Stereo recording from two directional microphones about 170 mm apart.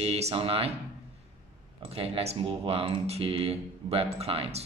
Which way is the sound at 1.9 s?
35° right (ahead or behind).